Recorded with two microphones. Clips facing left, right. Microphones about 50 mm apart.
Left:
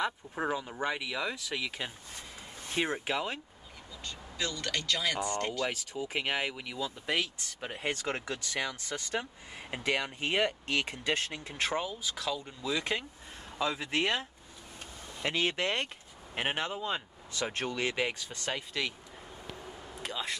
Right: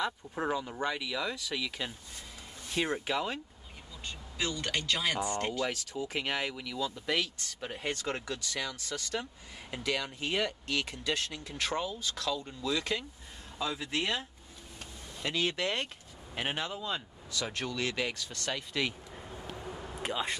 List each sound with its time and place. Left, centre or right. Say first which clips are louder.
0.0 s speech: left 1 dB; centre
4.0 s speech: right 1 dB; centre
5.7 s speech: even; centre; by 11.7 s left
11.7 s speech: even; centre
13.6 s speech: left 3 dB; left
15.2 s speech: left 1 dB; left
18.7 s speech: right 2 dB; centre
20.0 s speech: right 3 dB; centre